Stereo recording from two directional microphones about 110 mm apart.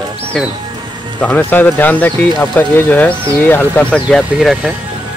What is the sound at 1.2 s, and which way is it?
Speech, 15° left (ahead or behind).